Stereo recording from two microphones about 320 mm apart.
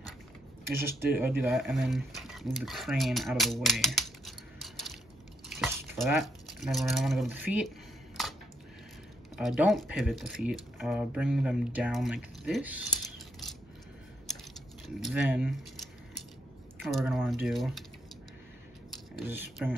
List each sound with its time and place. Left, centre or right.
0.7 s speech: centre
4.6 s a sound: centre
5.5 s speech: centre
8.2 s a sound: centre
9.4 s speech: centre
15.0 s speech: centre
16.8 s speech: centre
19.1 s speech: centre